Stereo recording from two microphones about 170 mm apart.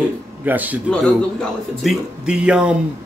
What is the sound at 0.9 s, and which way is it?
A man's voice, 5° left (ahead or behind).